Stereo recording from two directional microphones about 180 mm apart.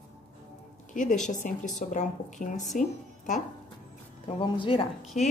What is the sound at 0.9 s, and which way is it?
A woman's voice, 45° left (ahead or behind).